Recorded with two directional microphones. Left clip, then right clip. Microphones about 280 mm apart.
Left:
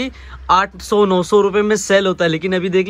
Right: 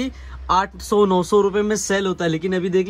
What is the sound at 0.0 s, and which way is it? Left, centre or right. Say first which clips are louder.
Speech: left 4 dB; centre.